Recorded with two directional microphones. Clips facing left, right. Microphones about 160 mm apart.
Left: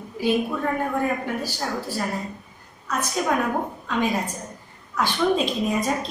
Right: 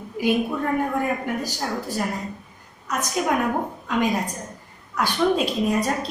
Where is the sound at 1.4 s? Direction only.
15° right (ahead or behind).